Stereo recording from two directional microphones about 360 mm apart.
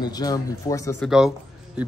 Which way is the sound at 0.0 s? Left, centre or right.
Centre.